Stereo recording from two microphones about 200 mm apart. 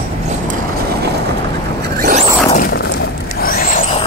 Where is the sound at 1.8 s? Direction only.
40° right (ahead or behind).